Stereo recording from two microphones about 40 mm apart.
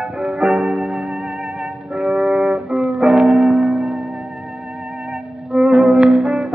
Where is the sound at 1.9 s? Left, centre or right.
Right.